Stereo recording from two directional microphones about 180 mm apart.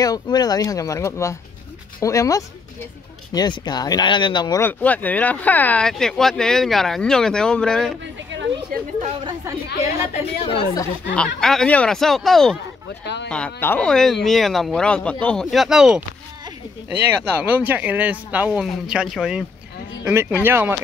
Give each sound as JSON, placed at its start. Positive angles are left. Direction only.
{"t": 0.0, "sound": "speech", "side_deg": 20}
{"t": 9.2, "sound": "speech", "side_deg": -15}
{"t": 10.4, "sound": "speech", "side_deg": 30}
{"t": 11.1, "sound": "speech", "side_deg": 0}
{"t": 13.0, "sound": "speech", "side_deg": 70}
{"t": 13.3, "sound": "speech", "side_deg": 10}